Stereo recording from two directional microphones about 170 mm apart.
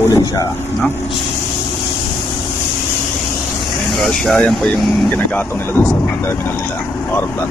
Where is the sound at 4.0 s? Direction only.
5° left (ahead or behind).